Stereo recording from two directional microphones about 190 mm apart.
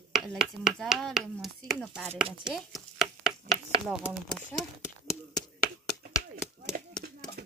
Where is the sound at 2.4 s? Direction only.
Centre (ahead or behind).